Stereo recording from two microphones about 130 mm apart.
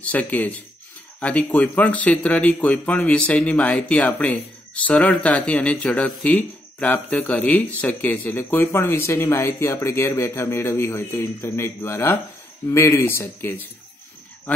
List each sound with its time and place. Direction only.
0.0 s speech: 10° left (ahead or behind)